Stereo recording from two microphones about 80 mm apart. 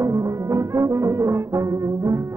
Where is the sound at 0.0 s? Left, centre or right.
Right.